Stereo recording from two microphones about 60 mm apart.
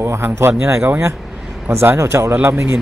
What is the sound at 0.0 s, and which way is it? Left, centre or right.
Speech, right.